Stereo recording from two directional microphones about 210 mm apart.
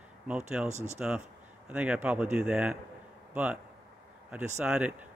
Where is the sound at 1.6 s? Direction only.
5° right (ahead or behind).